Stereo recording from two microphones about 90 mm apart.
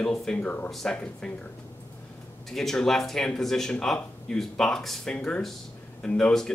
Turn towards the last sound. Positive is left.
turn(degrees=10)  # may be behind; listen again after turning